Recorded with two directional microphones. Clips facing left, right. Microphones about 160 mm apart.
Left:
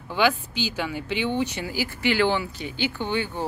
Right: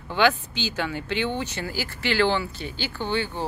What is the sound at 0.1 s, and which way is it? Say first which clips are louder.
Speech: right 1 dB; 10° left (ahead or behind).